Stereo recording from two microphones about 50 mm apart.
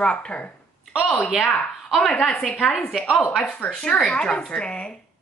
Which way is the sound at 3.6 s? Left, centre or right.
Left.